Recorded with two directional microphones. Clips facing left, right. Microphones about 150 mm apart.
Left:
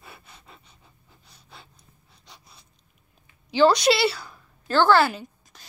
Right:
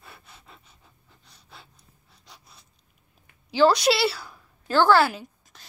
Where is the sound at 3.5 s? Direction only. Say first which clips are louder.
Left 1 dB; 5° right (ahead or behind).